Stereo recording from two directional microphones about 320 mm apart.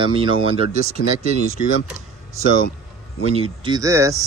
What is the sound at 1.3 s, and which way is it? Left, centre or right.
Speech, right.